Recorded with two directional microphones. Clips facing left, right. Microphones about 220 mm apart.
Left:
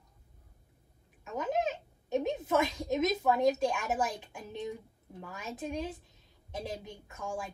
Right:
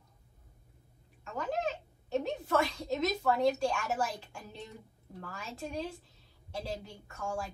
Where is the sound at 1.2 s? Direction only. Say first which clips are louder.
Left 2 dB; 20° left (ahead or behind).